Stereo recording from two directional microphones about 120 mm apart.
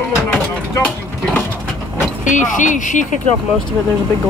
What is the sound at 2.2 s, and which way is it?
Speech, 90° left.